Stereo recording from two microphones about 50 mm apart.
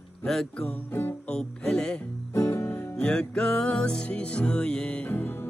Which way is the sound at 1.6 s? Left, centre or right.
Centre.